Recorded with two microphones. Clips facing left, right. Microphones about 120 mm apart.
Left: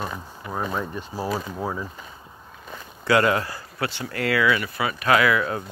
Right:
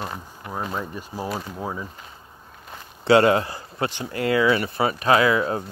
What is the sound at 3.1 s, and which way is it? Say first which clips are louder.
Speech: right 4 dB; 25° right (ahead or behind).